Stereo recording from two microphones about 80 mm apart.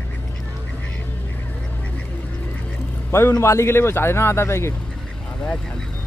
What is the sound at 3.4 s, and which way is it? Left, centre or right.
Speech, left.